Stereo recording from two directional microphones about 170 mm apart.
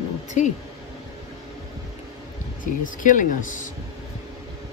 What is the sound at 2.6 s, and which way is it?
Speech, 50° left (ahead or behind).